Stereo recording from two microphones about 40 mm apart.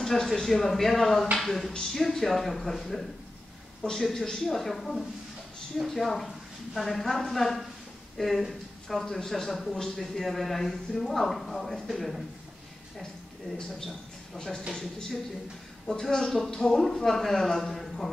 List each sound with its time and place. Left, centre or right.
0.0 s a man's voice: centre
9.7 s a man's voice: centre
13.8 s a man's voice: centre